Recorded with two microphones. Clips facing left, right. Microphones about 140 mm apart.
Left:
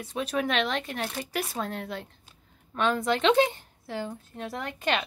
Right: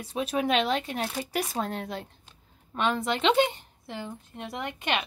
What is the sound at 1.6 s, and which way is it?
Speech, 30° right (ahead or behind).